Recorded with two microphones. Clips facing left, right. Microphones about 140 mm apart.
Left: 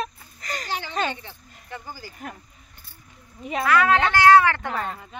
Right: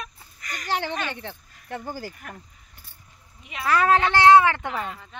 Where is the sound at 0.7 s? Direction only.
65° right (ahead or behind).